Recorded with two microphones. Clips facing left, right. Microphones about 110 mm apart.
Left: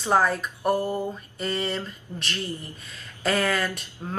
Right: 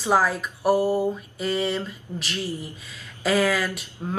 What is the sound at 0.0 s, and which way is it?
Speech, 5° right (ahead or behind).